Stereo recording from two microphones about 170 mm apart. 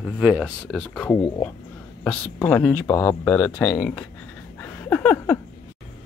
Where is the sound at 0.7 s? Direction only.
5° left (ahead or behind).